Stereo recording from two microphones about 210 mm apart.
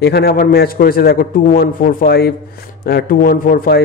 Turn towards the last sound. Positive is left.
turn(degrees=45)  # may be behind; listen again after turning